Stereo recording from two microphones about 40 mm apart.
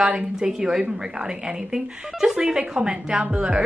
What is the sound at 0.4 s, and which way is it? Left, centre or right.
Speech, centre.